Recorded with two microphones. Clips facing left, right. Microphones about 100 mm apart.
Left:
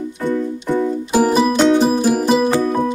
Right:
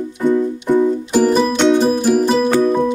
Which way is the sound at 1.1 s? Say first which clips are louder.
Left 1 dB; 10° left (ahead or behind).